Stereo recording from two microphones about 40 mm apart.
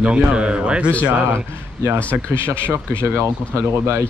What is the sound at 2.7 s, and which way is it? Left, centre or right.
Speech, right.